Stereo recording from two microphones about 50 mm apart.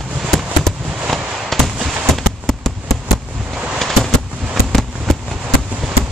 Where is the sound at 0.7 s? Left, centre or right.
Centre.